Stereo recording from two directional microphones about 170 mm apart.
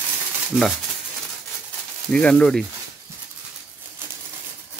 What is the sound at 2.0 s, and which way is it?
Speech, 5° left (ahead or behind).